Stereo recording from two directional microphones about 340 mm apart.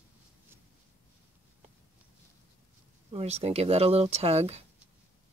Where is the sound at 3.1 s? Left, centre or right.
Centre.